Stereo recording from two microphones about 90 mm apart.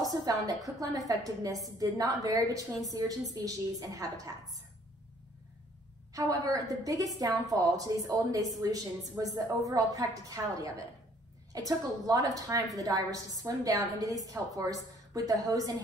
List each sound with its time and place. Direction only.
0.1 s a woman's voice: 45° right (ahead or behind)
6.1 s a woman's voice: 40° right (ahead or behind)